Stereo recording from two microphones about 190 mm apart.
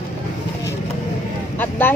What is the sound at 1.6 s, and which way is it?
Speech, 10° left (ahead or behind).